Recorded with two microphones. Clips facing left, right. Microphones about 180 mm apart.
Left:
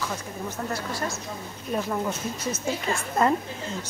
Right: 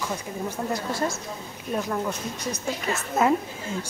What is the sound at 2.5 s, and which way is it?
Speech, 20° right (ahead or behind).